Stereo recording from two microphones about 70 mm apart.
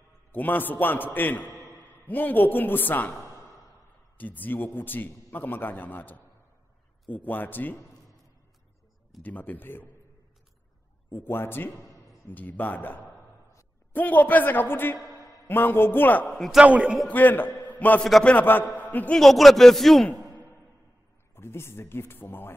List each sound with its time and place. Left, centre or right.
0.3 s a man's voice: left
4.2 s a man's voice: left
9.2 s a man's voice: left
11.1 s a man's voice: left
16.3 s a man's voice: centre
16.6 s a man's voice: centre
17.1 s a man's voice: left
19.1 s a man's voice: centre
21.4 s speech: left